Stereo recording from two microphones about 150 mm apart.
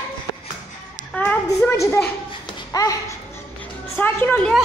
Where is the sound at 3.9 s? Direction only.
10° left (ahead or behind).